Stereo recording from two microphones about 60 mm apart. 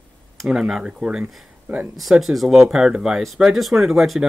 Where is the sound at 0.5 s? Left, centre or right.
Centre.